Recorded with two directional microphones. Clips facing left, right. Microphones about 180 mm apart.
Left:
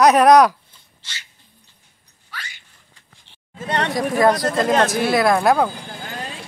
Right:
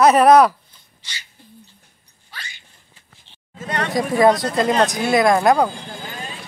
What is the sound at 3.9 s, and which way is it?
Speech, centre (ahead or behind).